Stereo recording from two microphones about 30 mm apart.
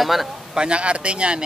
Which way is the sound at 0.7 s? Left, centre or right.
Right.